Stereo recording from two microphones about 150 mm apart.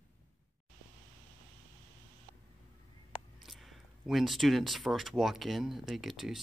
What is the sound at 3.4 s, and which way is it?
Speech, centre (ahead or behind).